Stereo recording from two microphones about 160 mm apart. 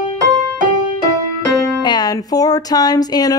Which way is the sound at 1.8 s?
25° left (ahead or behind).